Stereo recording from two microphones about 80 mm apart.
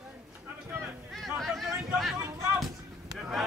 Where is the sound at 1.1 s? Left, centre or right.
Centre.